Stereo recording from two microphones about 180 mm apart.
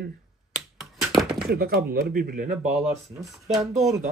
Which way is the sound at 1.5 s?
60° right (ahead or behind).